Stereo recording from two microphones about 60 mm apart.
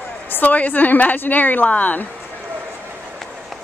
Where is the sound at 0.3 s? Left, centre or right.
Left.